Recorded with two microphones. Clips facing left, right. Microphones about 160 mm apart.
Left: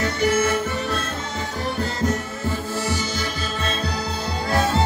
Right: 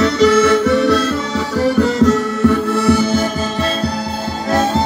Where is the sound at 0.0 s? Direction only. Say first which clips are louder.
Right 9 dB; 75° right (ahead or behind); by 3.3 s 60° right (ahead or behind).